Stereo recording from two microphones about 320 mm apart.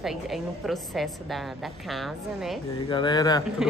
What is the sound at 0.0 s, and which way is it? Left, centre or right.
A woman's voice, centre.